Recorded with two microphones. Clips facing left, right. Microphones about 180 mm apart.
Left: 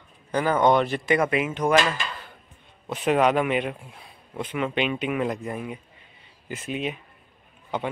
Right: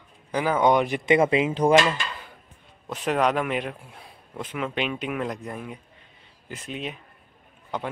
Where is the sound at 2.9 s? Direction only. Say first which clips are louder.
Left 3 dB; centre (ahead or behind).